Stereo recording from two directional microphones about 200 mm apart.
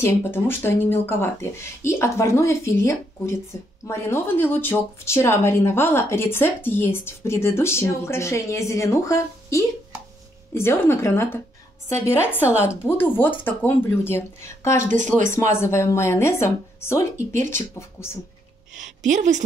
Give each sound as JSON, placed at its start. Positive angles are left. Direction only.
{"t": 0.0, "sound": "speech", "side_deg": 10}
{"t": 12.5, "sound": "speech", "side_deg": 10}
{"t": 19.0, "sound": "a woman's voice", "side_deg": -35}